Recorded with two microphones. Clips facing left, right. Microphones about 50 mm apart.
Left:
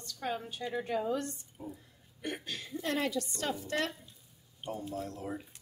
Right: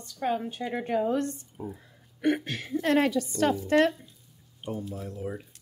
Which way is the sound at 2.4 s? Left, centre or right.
Right.